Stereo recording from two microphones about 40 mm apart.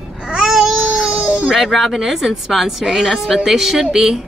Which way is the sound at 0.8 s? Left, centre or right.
Right.